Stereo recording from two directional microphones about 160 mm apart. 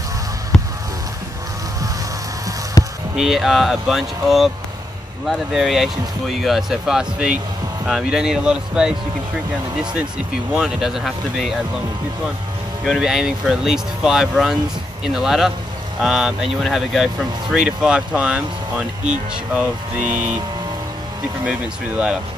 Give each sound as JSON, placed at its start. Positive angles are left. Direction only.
{"t": 2.8, "sound": "a sound", "side_deg": 20}
{"t": 3.2, "sound": "speech", "side_deg": 0}
{"t": 12.8, "sound": "speech", "side_deg": 0}
{"t": 21.5, "sound": "speech", "side_deg": -5}